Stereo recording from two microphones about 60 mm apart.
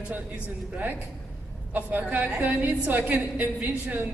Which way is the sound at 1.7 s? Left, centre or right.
Right.